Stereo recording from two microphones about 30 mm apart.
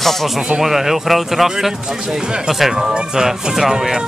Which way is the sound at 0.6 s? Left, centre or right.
Centre.